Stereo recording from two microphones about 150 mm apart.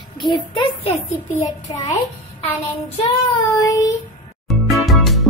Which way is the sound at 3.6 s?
25° left (ahead or behind).